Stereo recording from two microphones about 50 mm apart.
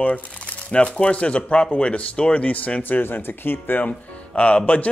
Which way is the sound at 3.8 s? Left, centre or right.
Left.